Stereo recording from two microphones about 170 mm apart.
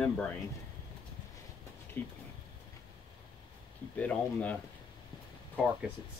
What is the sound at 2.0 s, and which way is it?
Speech, 15° left (ahead or behind).